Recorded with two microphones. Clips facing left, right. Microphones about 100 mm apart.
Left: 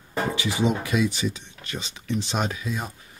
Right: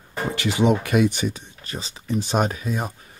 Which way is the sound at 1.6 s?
35° right (ahead or behind).